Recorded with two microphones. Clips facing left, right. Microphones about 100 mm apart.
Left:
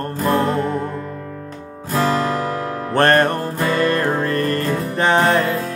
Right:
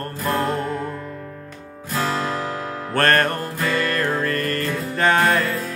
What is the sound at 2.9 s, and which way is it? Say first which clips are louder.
Music: left 4 dB; 20° left (ahead or behind).